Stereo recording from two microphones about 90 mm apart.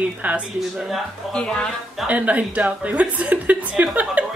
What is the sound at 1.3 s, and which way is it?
Speech, 10° left (ahead or behind).